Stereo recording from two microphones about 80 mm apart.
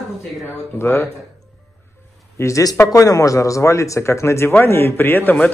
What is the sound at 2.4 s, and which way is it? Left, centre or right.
A man's voice, left.